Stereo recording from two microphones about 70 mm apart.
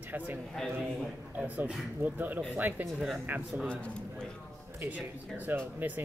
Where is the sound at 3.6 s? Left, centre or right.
Centre.